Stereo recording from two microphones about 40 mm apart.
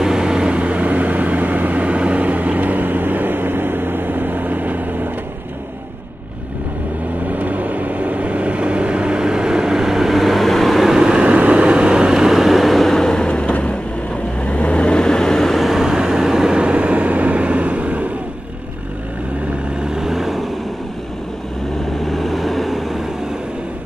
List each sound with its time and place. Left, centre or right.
0.0 s vehicle: centre; by 5.1 s right
7.2 s vehicle: right; by 10.9 s centre
10.9 s vehicle: centre
11.3 s vehicle: right; by 13.5 s left
13.5 s vehicle: left; by 15.5 s centre
15.5 s vehicle: centre
15.8 s vehicle: centre
16.6 s vehicle: right
19.8 s vehicle: centre
22.0 s vehicle: centre